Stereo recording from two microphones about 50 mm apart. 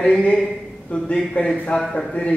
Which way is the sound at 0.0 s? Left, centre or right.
Left.